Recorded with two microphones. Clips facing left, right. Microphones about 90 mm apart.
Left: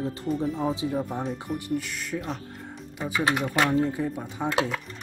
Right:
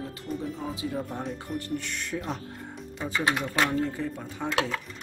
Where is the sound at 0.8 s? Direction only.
15° left (ahead or behind).